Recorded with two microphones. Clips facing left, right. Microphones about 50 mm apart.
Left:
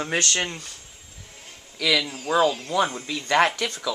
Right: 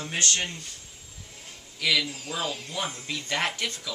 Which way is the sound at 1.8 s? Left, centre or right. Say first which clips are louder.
Left 4 dB; left.